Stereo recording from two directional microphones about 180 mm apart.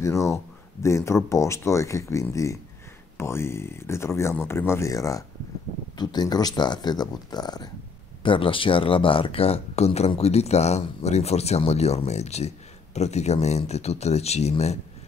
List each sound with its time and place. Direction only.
0.0 s speech: 15° left (ahead or behind); by 14.8 s 35° left (ahead or behind)